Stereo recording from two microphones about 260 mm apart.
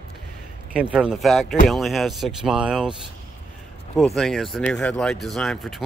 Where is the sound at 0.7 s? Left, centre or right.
Centre.